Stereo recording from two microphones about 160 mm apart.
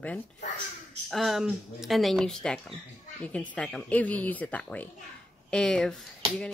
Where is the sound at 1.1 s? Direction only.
Centre (ahead or behind).